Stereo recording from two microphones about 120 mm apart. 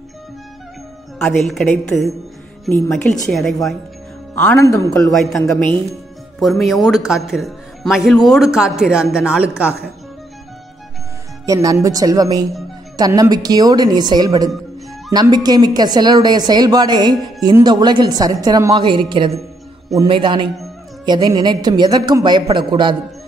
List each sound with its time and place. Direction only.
1.2 s speech: 5° left (ahead or behind)
3.3 s speech: 5° left (ahead or behind)
4.6 s a man's voice: 25° left (ahead or behind)
5.1 s speech: centre (ahead or behind)
6.4 s speech: centre (ahead or behind)
11.4 s speech: 30° right (ahead or behind)